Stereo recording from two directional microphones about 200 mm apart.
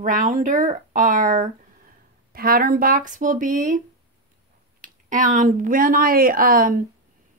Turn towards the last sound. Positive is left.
turn(degrees=-45)  # may be behind; listen again after turning